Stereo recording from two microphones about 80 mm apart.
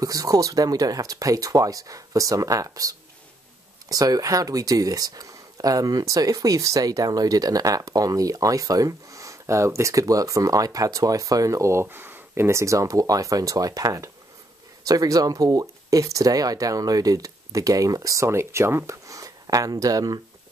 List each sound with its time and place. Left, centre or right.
0.0 s speech: right